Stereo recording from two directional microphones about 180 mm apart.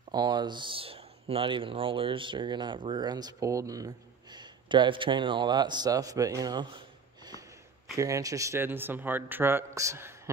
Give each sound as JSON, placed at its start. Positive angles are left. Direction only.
{"t": 0.1, "sound": "speech", "side_deg": -25}
{"t": 7.9, "sound": "speech", "side_deg": -20}